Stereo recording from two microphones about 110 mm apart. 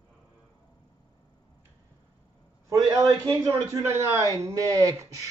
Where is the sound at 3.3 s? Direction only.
25° right (ahead or behind).